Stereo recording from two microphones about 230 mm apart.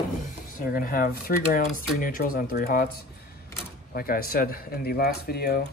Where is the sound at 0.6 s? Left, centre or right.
Left.